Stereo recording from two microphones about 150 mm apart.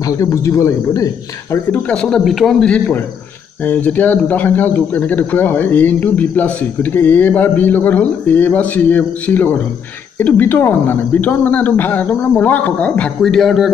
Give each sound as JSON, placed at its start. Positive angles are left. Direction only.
{"t": 0.0, "sound": "speech", "side_deg": 20}
{"t": 1.7, "sound": "speech", "side_deg": 10}